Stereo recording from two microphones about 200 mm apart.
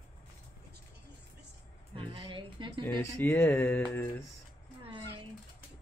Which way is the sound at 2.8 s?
10° left (ahead or behind).